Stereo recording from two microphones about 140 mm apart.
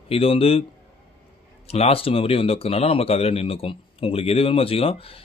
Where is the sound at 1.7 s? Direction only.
45° left (ahead or behind).